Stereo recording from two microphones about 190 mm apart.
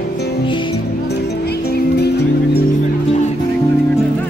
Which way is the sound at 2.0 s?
60° left (ahead or behind).